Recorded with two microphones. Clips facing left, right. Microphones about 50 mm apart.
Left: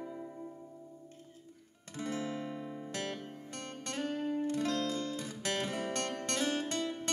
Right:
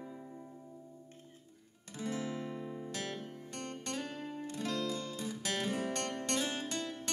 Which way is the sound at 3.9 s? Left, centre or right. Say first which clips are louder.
Left 8 dB; left.